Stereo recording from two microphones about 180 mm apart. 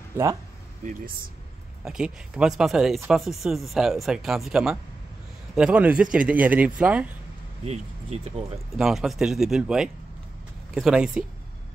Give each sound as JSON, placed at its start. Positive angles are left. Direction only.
{"t": 1.9, "sound": "speech", "side_deg": -5}
{"t": 7.6, "sound": "speech", "side_deg": -35}
{"t": 8.7, "sound": "speech", "side_deg": 0}